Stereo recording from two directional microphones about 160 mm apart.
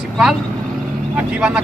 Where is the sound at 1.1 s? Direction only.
5° right (ahead or behind).